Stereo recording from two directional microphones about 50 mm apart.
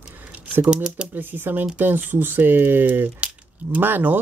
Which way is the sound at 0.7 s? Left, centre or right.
Right.